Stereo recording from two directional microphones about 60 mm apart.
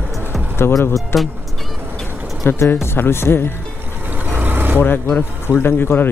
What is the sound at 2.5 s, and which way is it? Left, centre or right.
Speech, left.